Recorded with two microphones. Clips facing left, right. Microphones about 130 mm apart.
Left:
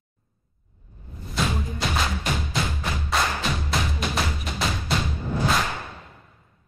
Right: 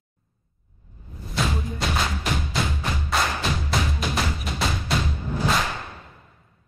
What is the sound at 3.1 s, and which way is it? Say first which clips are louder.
Music: even; centre (ahead or behind).